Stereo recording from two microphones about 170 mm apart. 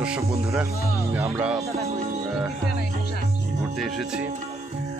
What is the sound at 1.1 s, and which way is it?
Music, 15° right (ahead or behind).